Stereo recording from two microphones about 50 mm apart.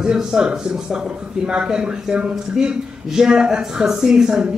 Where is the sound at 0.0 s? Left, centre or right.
Centre.